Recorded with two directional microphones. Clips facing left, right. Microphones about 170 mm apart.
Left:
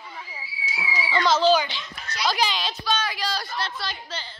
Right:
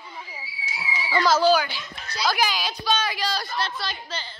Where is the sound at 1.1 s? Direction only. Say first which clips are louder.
Even; 5° right (ahead or behind).